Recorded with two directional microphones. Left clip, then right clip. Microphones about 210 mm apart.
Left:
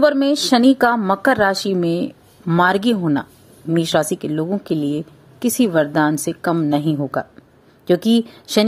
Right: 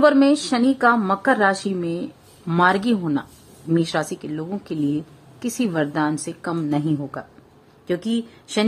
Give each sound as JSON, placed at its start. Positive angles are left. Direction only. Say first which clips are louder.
{"t": 0.0, "sound": "a woman's voice", "louder": "left 1 dB", "side_deg": 20}